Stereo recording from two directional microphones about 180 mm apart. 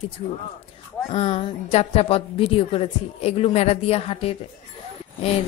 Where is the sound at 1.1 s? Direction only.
35° left (ahead or behind).